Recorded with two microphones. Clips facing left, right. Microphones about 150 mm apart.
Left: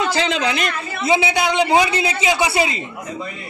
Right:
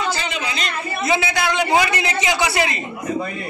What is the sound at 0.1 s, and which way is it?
Speech, 90° left.